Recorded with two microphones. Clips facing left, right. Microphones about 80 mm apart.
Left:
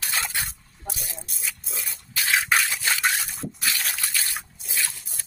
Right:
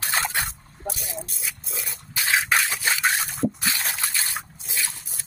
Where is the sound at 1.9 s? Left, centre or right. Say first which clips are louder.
Right 1 dB; right.